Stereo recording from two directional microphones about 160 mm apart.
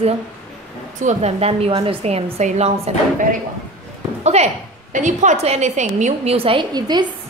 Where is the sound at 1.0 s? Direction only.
40° right (ahead or behind).